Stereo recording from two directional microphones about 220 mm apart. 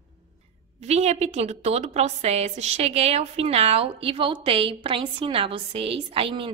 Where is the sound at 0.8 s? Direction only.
30° right (ahead or behind).